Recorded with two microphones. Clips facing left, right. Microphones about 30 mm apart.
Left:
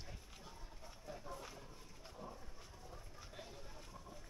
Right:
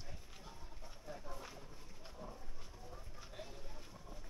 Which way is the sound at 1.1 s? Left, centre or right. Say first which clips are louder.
Even; centre.